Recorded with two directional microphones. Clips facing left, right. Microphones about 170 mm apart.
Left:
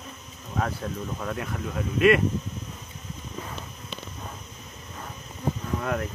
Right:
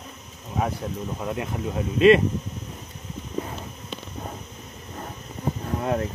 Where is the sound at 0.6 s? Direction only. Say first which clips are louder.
Right 2 dB; 15° right (ahead or behind).